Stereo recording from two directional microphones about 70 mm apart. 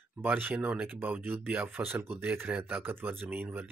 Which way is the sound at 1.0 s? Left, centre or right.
Right.